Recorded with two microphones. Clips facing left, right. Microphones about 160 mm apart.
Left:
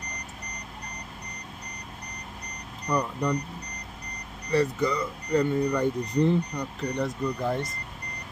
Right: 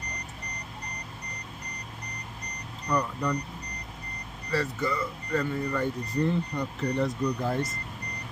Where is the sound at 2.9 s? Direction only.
15° left (ahead or behind).